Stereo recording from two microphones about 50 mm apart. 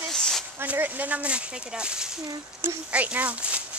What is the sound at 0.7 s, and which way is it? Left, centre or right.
Speech, right.